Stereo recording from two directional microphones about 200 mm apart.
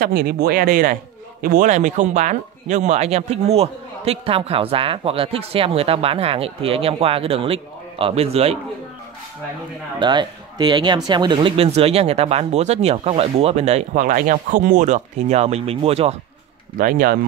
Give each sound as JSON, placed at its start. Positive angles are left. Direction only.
{"t": 0.0, "sound": "speech", "side_deg": -50}
{"t": 9.9, "sound": "speech", "side_deg": -20}
{"t": 16.7, "sound": "speech", "side_deg": -45}